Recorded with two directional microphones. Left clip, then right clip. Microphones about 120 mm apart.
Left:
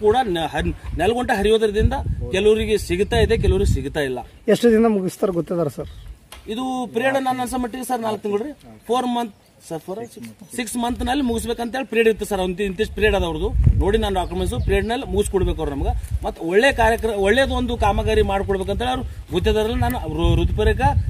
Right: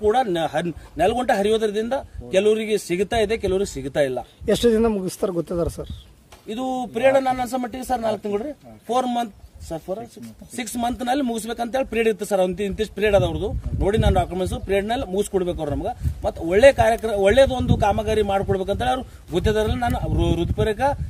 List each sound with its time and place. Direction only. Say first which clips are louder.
0.0 s a man's voice: left 1 dB; 40° right (ahead or behind)
4.6 s speech: left 2 dB; 85° left
6.9 s a man's voice: right 3 dB; 45° right (ahead or behind)